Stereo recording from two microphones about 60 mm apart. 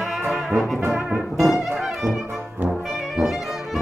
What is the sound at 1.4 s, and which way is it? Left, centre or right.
Brass instrument, centre.